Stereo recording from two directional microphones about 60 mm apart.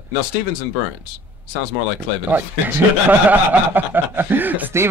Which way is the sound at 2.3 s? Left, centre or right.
Right.